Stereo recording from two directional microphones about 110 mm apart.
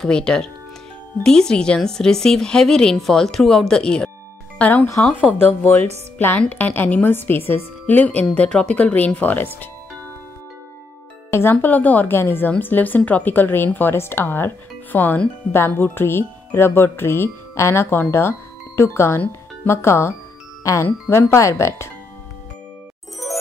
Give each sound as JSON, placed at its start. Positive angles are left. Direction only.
{"t": 0.0, "sound": "a woman's voice", "side_deg": 5}
{"t": 11.2, "sound": "a woman's voice", "side_deg": 25}